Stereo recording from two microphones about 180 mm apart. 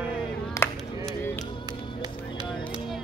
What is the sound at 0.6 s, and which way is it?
Clapping, 15° left (ahead or behind).